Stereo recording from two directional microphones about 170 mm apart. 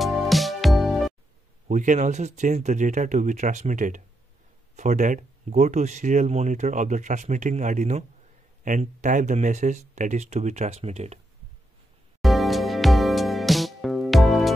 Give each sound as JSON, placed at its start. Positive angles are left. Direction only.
{"t": 0.0, "sound": "music", "side_deg": 0}
{"t": 1.7, "sound": "speech", "side_deg": -45}
{"t": 12.2, "sound": "music", "side_deg": 0}